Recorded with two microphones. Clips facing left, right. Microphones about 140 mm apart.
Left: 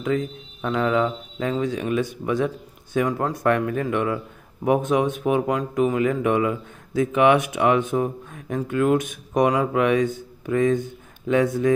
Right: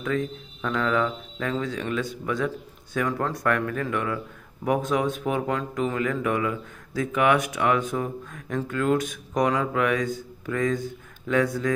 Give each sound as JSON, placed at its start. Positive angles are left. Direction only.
{"t": 0.0, "sound": "speech", "side_deg": 20}